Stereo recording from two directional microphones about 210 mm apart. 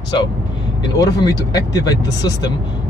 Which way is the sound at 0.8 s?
20° left (ahead or behind).